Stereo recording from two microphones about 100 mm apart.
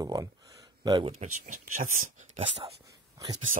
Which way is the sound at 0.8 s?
50° right (ahead or behind).